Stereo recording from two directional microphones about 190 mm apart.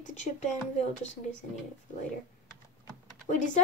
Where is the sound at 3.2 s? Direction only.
40° left (ahead or behind).